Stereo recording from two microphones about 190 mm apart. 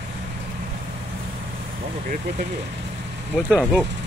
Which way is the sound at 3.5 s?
5° right (ahead or behind).